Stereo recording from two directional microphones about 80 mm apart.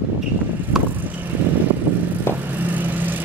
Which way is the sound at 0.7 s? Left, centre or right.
Centre.